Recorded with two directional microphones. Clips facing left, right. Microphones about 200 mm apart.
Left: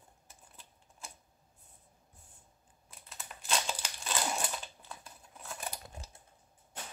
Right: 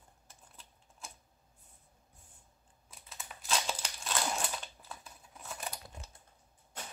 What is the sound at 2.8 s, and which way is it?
Crumpling, centre (ahead or behind).